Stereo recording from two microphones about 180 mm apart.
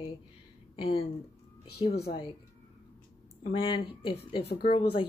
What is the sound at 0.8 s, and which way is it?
Speech, 30° left (ahead or behind).